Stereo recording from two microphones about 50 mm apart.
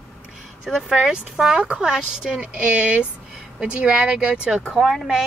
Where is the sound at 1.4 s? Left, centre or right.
Centre.